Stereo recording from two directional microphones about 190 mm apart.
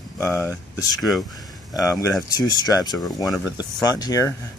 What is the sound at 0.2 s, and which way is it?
Speech, 10° left (ahead or behind).